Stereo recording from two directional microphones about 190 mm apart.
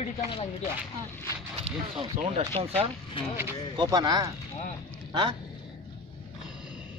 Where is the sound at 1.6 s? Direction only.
35° right (ahead or behind).